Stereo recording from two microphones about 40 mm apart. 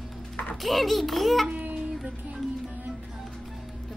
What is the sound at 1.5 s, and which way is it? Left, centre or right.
Music, right.